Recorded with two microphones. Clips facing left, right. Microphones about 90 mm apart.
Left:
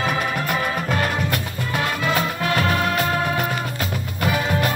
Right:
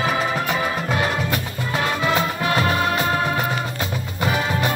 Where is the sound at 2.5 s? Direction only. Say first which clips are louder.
Right 1 dB; 20° right (ahead or behind).